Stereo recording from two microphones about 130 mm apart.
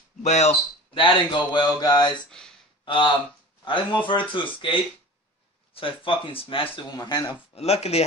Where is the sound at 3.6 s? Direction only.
40° left (ahead or behind).